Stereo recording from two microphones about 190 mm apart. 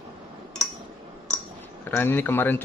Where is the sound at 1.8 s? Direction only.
10° left (ahead or behind).